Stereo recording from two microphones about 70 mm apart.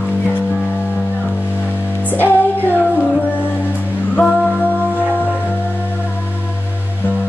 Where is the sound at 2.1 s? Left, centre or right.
Left.